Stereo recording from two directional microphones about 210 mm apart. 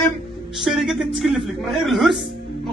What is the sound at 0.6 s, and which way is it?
Speech, centre (ahead or behind).